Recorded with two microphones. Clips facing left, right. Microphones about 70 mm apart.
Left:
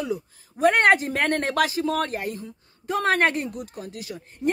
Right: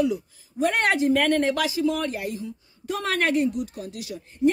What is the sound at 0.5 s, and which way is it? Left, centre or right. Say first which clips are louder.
Speech: left 4 dB; left.